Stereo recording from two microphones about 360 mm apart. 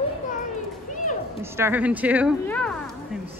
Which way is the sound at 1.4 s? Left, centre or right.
Centre.